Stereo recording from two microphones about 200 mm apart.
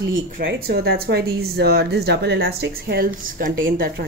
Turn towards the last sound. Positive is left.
turn(degrees=-50)  # may be behind; listen again after turning